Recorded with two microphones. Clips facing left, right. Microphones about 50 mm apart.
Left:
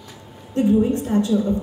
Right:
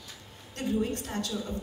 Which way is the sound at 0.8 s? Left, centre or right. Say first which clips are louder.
Left 12 dB; left.